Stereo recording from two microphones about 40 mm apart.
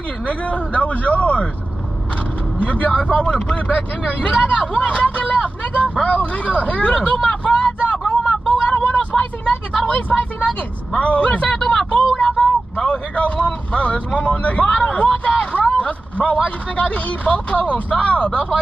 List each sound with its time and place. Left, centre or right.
0.3 s speech: left
2.6 s speech: left
7.2 s vehicle: left
8.6 s vehicle: left
9.2 s speech: left